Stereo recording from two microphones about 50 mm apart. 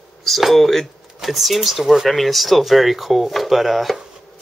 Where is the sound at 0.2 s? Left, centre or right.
Centre.